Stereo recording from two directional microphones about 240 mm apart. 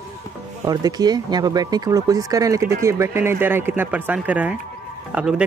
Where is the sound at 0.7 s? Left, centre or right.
Centre.